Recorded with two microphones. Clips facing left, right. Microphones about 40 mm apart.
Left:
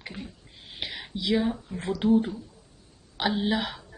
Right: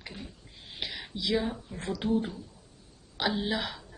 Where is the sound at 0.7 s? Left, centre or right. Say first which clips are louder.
Left 2 dB; centre.